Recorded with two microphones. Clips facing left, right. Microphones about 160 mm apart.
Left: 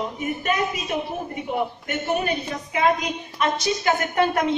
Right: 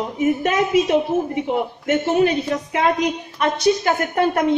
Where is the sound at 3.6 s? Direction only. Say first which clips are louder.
Right 5 dB; 50° right (ahead or behind).